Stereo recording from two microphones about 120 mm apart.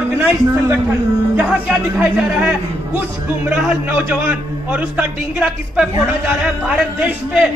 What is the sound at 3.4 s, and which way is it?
A man's voice, 5° right (ahead or behind).